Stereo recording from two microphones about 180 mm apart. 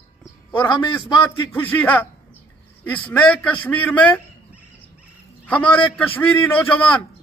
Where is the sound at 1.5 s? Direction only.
10° left (ahead or behind).